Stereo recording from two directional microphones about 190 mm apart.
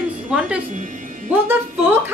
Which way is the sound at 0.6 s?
40° right (ahead or behind).